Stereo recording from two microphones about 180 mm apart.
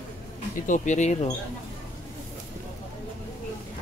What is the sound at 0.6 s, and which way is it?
Speech, 45° left (ahead or behind).